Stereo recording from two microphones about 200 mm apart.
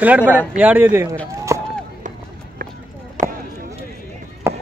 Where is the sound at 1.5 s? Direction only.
15° right (ahead or behind).